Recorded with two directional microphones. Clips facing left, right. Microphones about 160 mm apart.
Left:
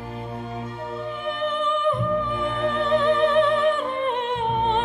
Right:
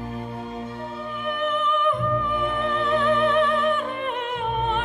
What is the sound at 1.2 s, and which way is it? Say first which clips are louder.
Music: right 1 dB; 30° left (ahead or behind).